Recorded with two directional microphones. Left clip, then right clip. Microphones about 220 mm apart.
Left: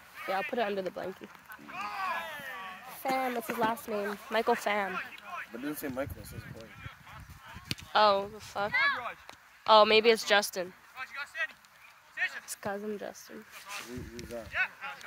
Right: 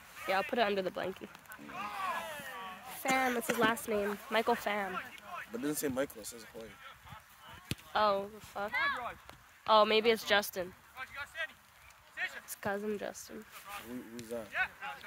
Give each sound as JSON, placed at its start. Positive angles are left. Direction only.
{"t": 0.3, "sound": "speech", "side_deg": 10}
{"t": 1.8, "sound": "boat", "side_deg": 25}
{"t": 2.9, "sound": "speech", "side_deg": 5}
{"t": 4.3, "sound": "speech", "side_deg": 20}
{"t": 4.9, "sound": "a sound", "side_deg": 15}
{"t": 5.6, "sound": "speech", "side_deg": -45}
{"t": 7.9, "sound": "speech", "side_deg": 35}
{"t": 11.0, "sound": "a sound", "side_deg": 0}
{"t": 12.5, "sound": "speech", "side_deg": 15}
{"t": 14.1, "sound": "speech", "side_deg": -15}